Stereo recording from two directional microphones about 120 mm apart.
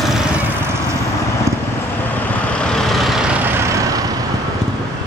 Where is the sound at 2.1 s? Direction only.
15° left (ahead or behind).